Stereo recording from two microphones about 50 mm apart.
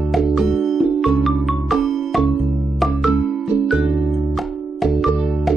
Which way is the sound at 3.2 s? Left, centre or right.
Centre.